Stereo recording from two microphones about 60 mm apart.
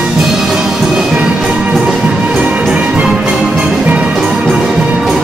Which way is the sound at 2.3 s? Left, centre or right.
Centre.